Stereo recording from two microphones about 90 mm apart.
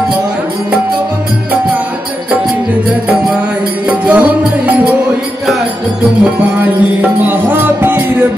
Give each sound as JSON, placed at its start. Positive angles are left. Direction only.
{"t": 4.0, "sound": "music", "side_deg": -15}
{"t": 6.6, "sound": "music", "side_deg": -20}